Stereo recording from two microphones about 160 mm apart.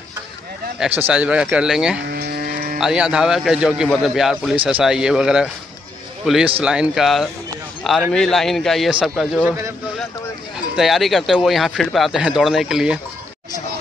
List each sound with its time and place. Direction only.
0.7 s speech: 10° right (ahead or behind)
2.1 s vehicle: 75° right (ahead or behind)
2.8 s speech: 5° right (ahead or behind)
10.8 s speech: centre (ahead or behind)